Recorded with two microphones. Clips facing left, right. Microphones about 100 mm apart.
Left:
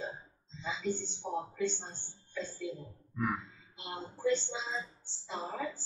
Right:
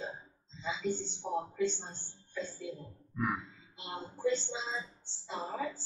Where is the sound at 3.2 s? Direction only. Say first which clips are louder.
Even; 5° right (ahead or behind).